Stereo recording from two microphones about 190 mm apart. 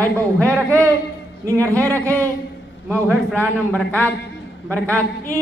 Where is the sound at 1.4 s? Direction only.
15° right (ahead or behind).